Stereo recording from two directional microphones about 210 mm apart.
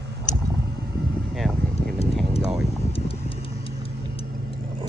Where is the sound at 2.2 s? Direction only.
Centre (ahead or behind).